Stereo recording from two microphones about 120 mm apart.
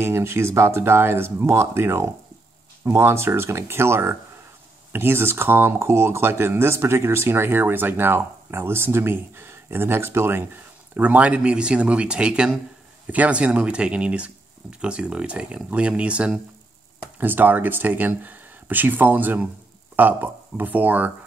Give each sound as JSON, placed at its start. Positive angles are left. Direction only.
{"t": 0.0, "sound": "speech", "side_deg": -20}